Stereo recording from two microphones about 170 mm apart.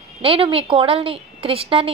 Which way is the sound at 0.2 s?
35° right (ahead or behind).